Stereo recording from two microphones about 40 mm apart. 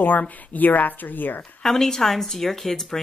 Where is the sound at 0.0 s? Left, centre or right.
Left.